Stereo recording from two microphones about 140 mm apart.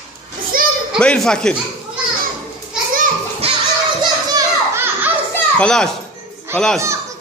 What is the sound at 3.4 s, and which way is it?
Children playing, 45° right (ahead or behind).